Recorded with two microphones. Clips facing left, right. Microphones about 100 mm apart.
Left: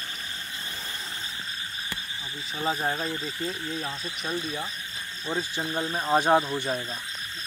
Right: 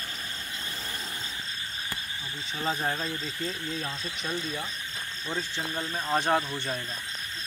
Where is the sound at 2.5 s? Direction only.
10° left (ahead or behind).